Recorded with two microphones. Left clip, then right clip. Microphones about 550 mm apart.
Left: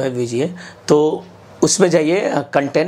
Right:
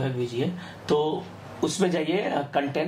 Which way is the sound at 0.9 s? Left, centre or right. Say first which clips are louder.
Left 10 dB; left.